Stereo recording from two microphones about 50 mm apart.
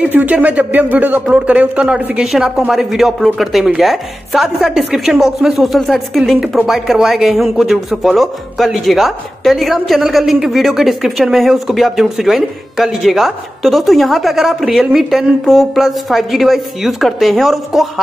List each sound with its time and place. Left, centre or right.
0.0 s speech: right
1.3 s speech: right
2.2 s a man's voice: centre